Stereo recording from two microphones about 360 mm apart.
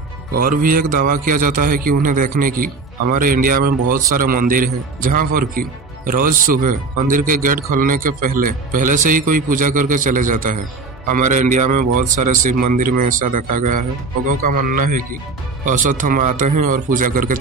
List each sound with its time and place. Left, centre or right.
0.3 s a man's voice: right
14.5 s a man's voice: right